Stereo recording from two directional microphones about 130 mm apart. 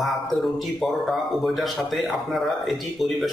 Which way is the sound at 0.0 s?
Centre (ahead or behind).